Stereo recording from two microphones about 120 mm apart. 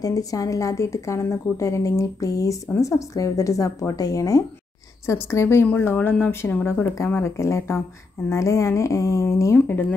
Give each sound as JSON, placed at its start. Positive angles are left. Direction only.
{"t": 0.0, "sound": "a woman's voice", "side_deg": 30}